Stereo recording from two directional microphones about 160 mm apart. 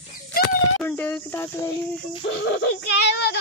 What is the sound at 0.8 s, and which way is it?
Speech, 10° left (ahead or behind).